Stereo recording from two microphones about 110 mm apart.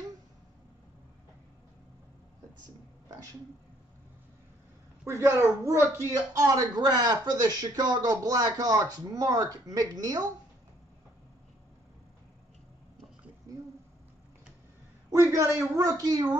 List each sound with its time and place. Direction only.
5.0 s a woman's voice: 25° right (ahead or behind)
15.1 s speech: 25° right (ahead or behind)